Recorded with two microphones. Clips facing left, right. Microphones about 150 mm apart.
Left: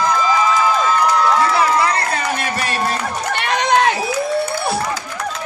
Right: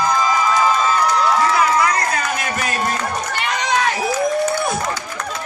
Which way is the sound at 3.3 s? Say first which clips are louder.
Left 6 dB; 60° left (ahead or behind).